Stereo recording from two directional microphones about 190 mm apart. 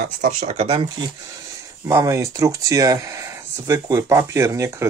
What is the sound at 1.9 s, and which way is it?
Speech, 15° right (ahead or behind).